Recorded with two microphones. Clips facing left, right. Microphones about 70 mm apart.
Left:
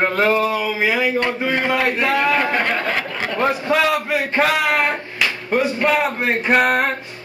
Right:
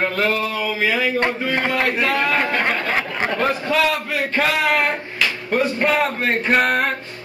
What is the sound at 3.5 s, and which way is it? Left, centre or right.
Male singing, left.